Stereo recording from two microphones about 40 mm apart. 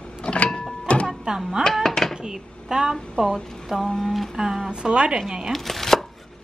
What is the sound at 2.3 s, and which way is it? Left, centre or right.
Speech, centre.